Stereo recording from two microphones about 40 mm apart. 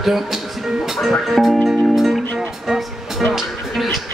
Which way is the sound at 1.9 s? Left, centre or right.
Centre.